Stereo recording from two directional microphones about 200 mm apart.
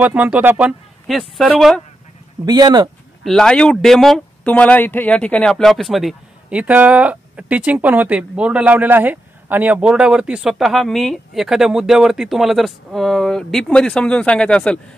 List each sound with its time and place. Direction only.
0.0 s speech: 5° right (ahead or behind)
2.4 s speech: 20° right (ahead or behind)
3.3 s speech: 5° left (ahead or behind)